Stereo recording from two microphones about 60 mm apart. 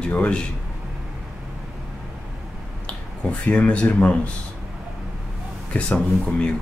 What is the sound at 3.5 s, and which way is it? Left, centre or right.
Speech, left.